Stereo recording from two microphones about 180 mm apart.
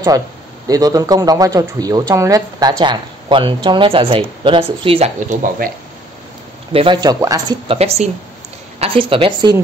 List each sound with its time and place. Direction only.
0.7 s speech: 20° right (ahead or behind); by 5.7 s 45° right (ahead or behind)
6.7 s speech: 30° right (ahead or behind)